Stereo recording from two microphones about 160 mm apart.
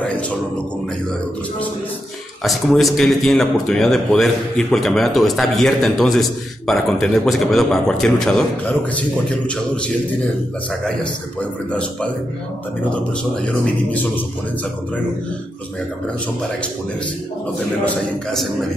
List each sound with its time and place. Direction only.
2.4 s a man's voice: centre (ahead or behind)
12.9 s speech: 5° left (ahead or behind)
17.8 s a man's voice: centre (ahead or behind)